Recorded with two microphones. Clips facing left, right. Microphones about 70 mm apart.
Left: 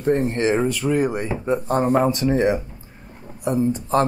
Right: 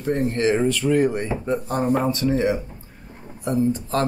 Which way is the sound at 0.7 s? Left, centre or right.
Centre.